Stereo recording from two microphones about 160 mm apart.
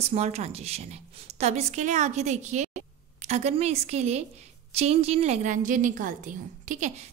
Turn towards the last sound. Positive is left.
turn(degrees=-50)  # may be behind; listen again after turning